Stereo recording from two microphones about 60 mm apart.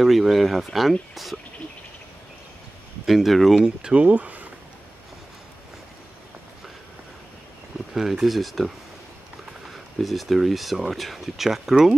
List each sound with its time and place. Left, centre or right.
0.0 s speech: centre
3.1 s speech: centre
3.6 s speech: centre
7.9 s speech: centre